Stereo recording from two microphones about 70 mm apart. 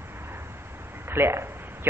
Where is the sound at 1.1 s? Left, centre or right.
Right.